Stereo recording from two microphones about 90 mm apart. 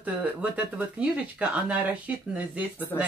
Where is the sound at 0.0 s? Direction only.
15° right (ahead or behind).